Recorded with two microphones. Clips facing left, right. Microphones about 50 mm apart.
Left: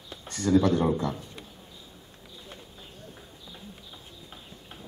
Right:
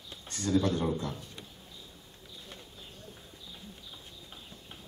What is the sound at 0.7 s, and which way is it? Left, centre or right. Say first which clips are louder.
Speech: left 6 dB; left.